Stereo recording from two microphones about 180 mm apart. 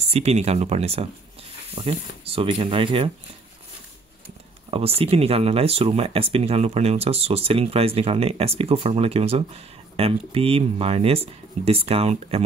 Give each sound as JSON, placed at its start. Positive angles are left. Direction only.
{"t": 0.1, "sound": "speech", "side_deg": -35}
{"t": 4.6, "sound": "speech", "side_deg": -30}